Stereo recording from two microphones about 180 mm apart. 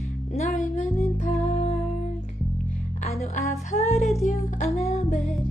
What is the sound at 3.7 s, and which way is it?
Music, 35° left (ahead or behind).